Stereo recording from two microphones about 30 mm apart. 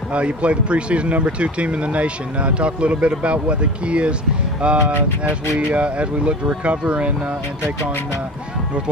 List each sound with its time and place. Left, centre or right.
0.1 s speech: right